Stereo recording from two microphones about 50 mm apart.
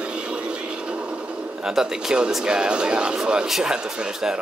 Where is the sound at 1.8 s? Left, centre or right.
Centre.